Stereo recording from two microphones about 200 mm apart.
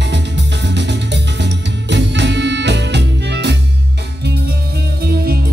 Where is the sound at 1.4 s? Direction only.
60° right (ahead or behind).